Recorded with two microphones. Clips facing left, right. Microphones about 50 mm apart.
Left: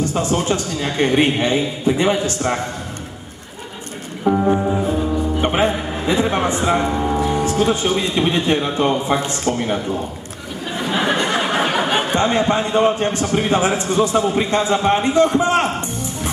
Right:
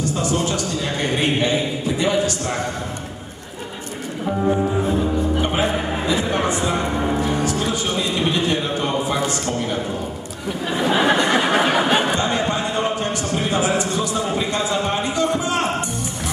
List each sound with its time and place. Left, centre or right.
0.1 s a man's voice: left
4.3 s music: centre
5.4 s music: left
7.4 s a man's voice: left
10.8 s a sound: centre
12.2 s a man's voice: left